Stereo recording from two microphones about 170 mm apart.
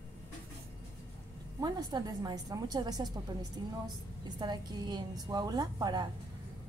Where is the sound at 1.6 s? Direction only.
25° right (ahead or behind).